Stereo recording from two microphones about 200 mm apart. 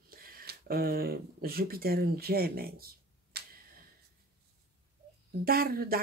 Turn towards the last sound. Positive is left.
turn(degrees=-50)  # may be behind; listen again after turning